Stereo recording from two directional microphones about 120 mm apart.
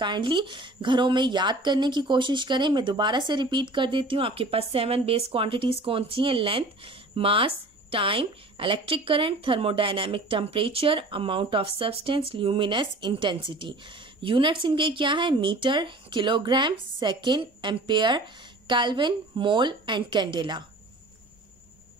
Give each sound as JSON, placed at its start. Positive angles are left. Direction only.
{"t": 0.0, "sound": "a woman's voice", "side_deg": -40}